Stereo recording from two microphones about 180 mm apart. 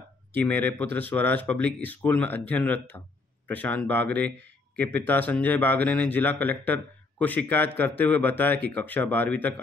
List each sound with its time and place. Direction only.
0.5 s speech: 10° left (ahead or behind)